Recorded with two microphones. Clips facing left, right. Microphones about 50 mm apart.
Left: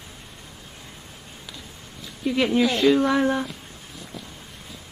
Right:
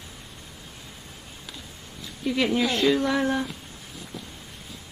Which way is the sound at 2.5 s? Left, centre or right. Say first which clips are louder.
Left 4 dB; centre.